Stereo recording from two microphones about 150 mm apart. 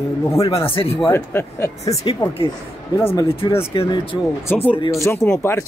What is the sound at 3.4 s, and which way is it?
Speech, 25° left (ahead or behind).